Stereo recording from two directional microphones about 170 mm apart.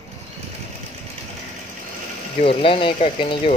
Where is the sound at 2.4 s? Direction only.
30° left (ahead or behind).